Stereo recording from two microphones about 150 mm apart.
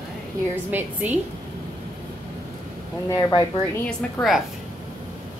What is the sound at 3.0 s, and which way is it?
Speech, 25° left (ahead or behind).